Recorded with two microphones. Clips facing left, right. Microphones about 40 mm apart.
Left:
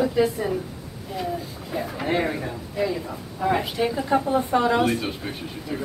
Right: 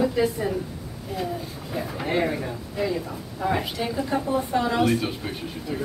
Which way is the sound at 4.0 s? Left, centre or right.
Centre.